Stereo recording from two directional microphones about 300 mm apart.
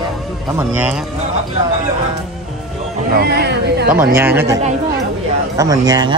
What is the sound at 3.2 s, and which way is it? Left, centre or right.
Speech, right.